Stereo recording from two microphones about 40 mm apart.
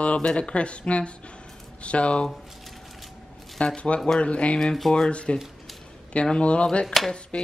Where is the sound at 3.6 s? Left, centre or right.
Left.